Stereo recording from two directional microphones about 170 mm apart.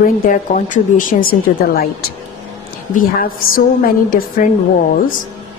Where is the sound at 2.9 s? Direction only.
55° left (ahead or behind).